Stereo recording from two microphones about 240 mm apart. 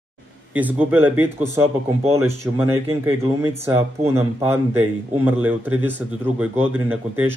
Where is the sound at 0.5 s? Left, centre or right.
Centre.